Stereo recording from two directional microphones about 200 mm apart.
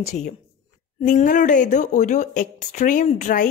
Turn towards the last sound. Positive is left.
turn(degrees=40)  # may be behind; listen again after turning